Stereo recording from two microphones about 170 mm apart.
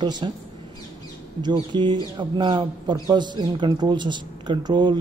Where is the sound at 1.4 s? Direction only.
25° right (ahead or behind).